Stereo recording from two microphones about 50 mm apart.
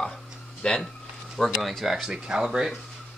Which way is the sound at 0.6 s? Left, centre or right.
Centre.